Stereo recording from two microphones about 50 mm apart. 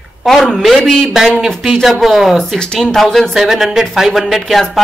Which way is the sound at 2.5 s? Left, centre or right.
Centre.